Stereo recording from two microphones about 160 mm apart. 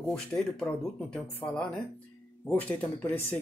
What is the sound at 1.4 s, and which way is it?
Speech, 15° left (ahead or behind).